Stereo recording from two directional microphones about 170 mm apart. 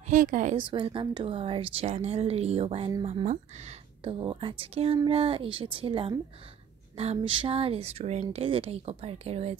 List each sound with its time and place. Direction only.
0.0 s speech: 50° right (ahead or behind)
0.6 s speech: 30° right (ahead or behind)
4.0 s speech: 30° right (ahead or behind)